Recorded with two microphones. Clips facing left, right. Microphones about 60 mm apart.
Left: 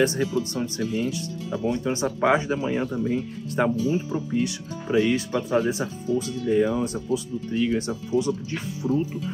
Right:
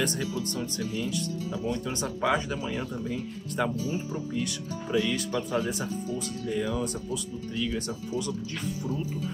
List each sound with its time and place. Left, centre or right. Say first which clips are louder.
0.0 s speech: left 7 dB; left